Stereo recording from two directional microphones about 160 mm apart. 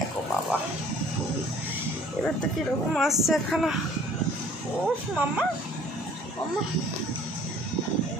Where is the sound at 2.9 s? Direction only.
Centre (ahead or behind).